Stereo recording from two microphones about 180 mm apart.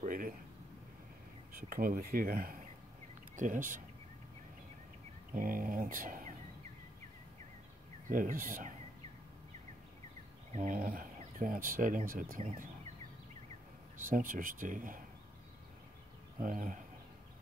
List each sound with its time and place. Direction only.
0.0 s speech: 50° right (ahead or behind)
1.6 s speech: 55° right (ahead or behind)
5.3 s speech: 50° right (ahead or behind)
8.1 s speech: 50° right (ahead or behind)
10.5 s speech: 45° right (ahead or behind)
14.1 s speech: 50° right (ahead or behind)
16.3 s speech: 50° right (ahead or behind)